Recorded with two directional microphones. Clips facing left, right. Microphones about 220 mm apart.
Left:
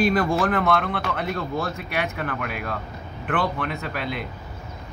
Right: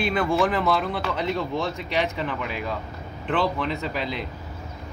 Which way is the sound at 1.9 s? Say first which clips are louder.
Right 2 dB; 60° left (ahead or behind).